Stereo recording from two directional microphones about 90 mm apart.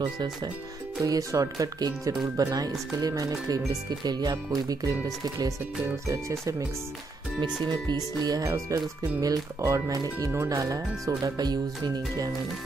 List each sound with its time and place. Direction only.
0.0 s speech: 55° right (ahead or behind)
1.0 s speech: 40° right (ahead or behind)
6.0 s speech: 35° right (ahead or behind)
7.6 s speech: 50° right (ahead or behind); by 10.6 s 25° right (ahead or behind)
10.6 s speech: 40° right (ahead or behind)